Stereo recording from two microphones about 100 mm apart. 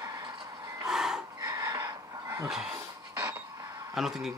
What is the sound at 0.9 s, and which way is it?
Gasp, 5° right (ahead or behind).